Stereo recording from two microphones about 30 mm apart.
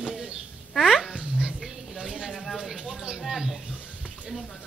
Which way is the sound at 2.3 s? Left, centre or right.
Centre.